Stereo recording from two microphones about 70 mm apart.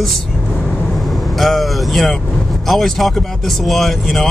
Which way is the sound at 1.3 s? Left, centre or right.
Centre.